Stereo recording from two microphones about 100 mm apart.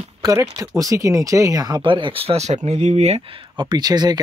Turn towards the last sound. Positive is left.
turn(degrees=-45)  # may be behind; listen again after turning